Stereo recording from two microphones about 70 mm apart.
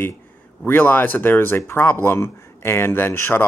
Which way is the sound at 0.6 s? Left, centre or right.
Left.